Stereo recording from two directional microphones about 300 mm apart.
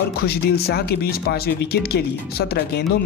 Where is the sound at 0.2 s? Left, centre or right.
Left.